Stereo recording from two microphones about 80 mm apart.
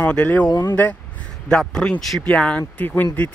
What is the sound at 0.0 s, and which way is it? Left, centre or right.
Speech, centre.